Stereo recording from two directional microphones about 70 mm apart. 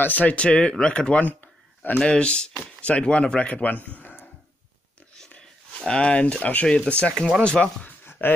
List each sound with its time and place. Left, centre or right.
0.0 s speech: left
5.4 s speech: centre
8.0 s a sound: left